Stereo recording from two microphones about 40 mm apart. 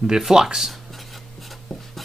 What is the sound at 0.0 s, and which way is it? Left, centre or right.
Speech, centre.